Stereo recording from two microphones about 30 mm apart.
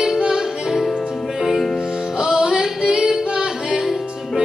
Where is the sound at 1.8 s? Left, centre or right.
Right.